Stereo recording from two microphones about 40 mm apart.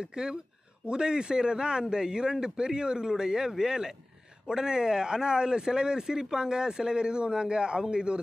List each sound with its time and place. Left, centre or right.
0.0 s a man's voice: centre